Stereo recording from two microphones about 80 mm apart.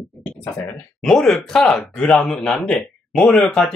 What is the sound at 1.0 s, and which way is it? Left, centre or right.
Speech, centre.